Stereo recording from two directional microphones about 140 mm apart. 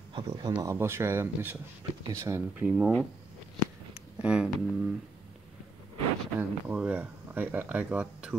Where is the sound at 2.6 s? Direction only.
5° right (ahead or behind).